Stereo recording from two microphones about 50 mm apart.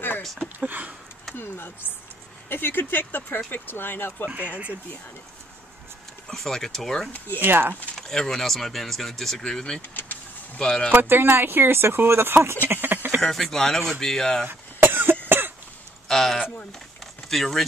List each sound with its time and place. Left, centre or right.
0.2 s a sound: centre
0.7 s a sound: right
1.3 s a sound: left
2.5 s speech: left
6.2 s speech: centre
7.3 s speech: right
8.0 s speech: centre
9.8 s speech: left
10.6 s speech: centre
10.9 s speech: right
12.6 s a sound: right
13.2 s speech: centre
14.4 s cough: right
16.1 s speech: centre